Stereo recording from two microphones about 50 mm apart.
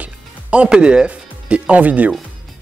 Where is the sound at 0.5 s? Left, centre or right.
Right.